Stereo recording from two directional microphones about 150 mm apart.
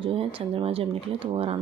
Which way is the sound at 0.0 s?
35° right (ahead or behind).